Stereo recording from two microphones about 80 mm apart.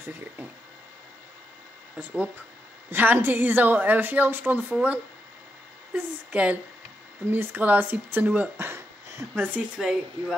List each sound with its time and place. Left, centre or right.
2.0 s a woman's voice: centre
9.3 s a woman's voice: right
9.8 s speech: centre